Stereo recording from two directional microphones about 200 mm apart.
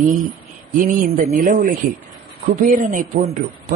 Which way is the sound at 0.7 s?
40° right (ahead or behind).